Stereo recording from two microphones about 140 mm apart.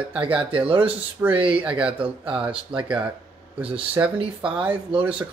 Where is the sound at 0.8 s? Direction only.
10° right (ahead or behind).